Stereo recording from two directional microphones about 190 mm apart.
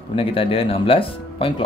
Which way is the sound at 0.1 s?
30° left (ahead or behind).